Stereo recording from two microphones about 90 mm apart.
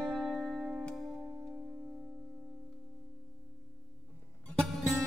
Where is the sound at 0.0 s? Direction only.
5° right (ahead or behind).